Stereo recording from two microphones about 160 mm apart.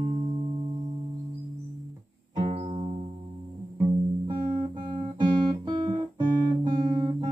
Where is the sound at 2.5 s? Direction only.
40° right (ahead or behind).